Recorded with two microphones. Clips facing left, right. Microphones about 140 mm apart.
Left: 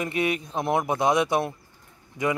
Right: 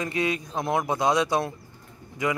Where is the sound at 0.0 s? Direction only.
25° left (ahead or behind).